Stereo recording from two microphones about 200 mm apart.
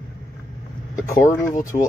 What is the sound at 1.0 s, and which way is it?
Speech, 15° left (ahead or behind).